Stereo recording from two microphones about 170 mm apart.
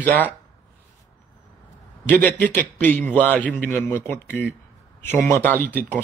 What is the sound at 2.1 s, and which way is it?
Speech, 10° left (ahead or behind).